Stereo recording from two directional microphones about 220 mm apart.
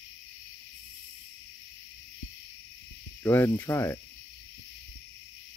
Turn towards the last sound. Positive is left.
turn(degrees=10)  # may be behind; listen again after turning